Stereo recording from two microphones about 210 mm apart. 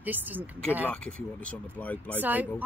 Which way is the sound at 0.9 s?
5° left (ahead or behind).